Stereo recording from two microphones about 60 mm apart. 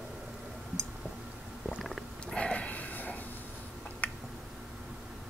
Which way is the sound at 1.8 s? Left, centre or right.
Centre.